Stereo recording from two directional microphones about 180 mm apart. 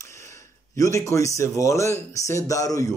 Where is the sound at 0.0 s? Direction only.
15° left (ahead or behind).